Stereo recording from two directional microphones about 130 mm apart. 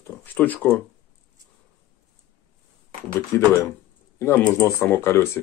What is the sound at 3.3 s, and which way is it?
Speech, 20° left (ahead or behind).